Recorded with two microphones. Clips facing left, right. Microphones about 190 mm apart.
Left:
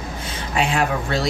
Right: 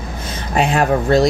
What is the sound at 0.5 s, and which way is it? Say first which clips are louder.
Speech: right 5 dB; 45° right (ahead or behind).